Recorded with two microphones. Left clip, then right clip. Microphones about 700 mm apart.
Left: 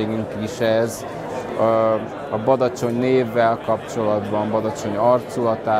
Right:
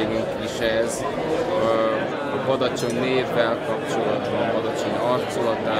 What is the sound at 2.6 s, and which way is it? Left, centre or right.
Speech, left.